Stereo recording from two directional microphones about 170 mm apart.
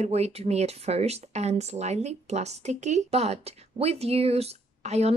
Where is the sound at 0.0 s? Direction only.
40° right (ahead or behind).